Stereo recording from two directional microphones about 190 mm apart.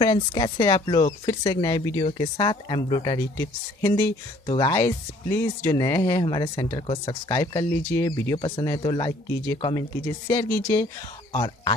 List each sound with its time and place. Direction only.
0.0 s speech: 25° left (ahead or behind)